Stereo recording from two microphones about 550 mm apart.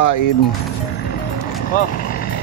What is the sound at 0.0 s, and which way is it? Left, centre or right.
Speech, left.